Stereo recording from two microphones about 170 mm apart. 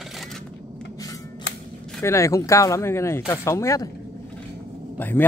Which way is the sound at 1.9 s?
15° left (ahead or behind).